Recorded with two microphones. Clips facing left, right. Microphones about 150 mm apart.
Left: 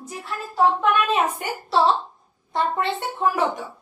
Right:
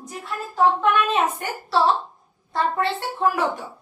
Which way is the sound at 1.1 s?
15° left (ahead or behind).